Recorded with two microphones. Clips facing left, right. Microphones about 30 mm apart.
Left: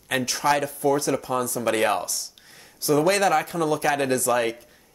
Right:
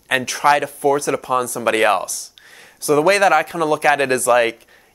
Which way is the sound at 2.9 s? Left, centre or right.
Right.